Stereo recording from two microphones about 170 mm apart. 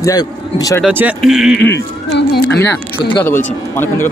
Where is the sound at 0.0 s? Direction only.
20° left (ahead or behind).